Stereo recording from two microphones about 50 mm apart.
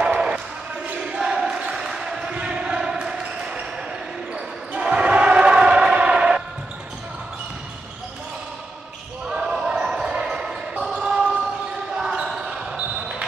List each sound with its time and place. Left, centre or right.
0.0 s basketball bounce: centre
1.1 s a sound: centre
2.3 s basketball bounce: right
4.7 s choir: right
9.3 s basketball bounce: centre